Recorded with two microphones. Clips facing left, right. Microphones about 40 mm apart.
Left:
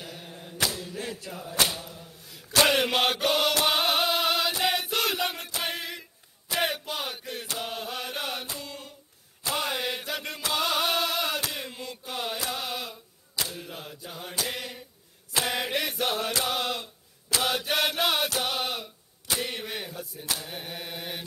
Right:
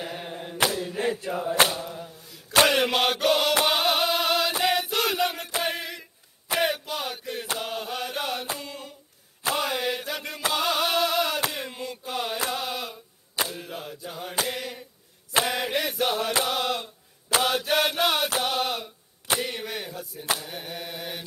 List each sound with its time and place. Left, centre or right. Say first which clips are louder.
0.0 s chant: right 7 dB; right
2.7 s chant: right 1 dB; centre
5.6 s a sound: right 4 dB; centre
7.5 s chant: right 2 dB; centre
8.5 s a sound: right 2 dB; centre
9.6 s chant: right 1 dB; centre
10.5 s music: right 1 dB; centre
11.5 s mantra: right 3 dB; centre
12.1 s chant: right 3 dB; centre
12.4 s mantra: right 3 dB; centre
15.4 s chant: right 2 dB; centre
17.4 s mantra: right 3 dB; centre
18.4 s a sound: right 3 dB; centre
20.3 s mantra: right 2 dB; centre